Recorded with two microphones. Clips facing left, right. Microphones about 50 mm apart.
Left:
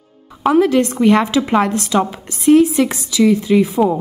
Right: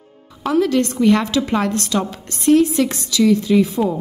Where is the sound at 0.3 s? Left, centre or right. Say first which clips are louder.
Left 4 dB; left.